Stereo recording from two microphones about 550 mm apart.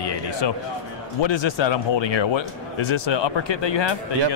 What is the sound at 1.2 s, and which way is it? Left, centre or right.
Speech, left.